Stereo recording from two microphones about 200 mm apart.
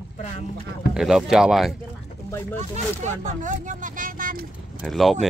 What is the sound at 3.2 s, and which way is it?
Speech, 40° right (ahead or behind).